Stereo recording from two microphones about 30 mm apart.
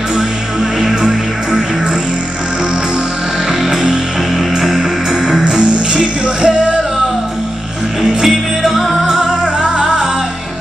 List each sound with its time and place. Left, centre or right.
0.7 s music: right
4.6 s music: centre
6.2 s music: right
8.0 s music: centre
9.4 s music: right